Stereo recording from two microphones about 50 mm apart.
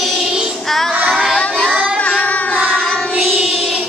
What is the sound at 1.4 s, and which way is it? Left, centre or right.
Child singing, centre.